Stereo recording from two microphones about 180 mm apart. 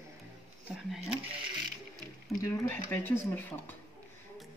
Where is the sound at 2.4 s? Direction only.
20° left (ahead or behind).